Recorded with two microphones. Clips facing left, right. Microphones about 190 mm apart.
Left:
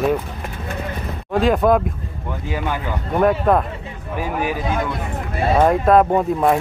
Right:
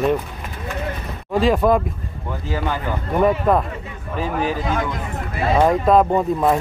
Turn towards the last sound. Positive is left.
turn(degrees=5)  # may be behind; listen again after turning